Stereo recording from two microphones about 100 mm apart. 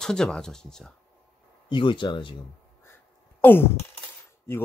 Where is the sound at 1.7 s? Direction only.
55° left (ahead or behind).